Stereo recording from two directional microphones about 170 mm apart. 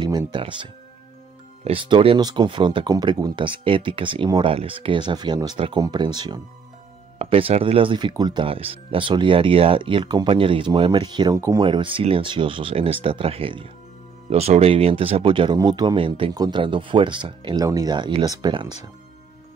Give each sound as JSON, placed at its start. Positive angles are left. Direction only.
{"t": 0.3, "sound": "speech", "side_deg": -30}
{"t": 7.2, "sound": "speech", "side_deg": -35}